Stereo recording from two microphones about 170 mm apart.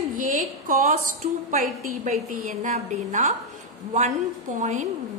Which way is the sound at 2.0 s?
50° right (ahead or behind).